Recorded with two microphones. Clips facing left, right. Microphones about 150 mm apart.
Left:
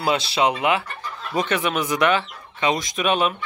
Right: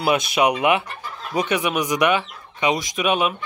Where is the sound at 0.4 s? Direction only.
20° right (ahead or behind).